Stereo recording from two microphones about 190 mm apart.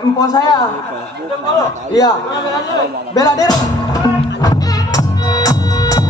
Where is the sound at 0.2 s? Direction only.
20° left (ahead or behind).